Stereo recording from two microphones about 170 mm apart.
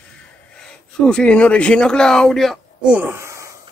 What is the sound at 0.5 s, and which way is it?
Speech, 5° left (ahead or behind).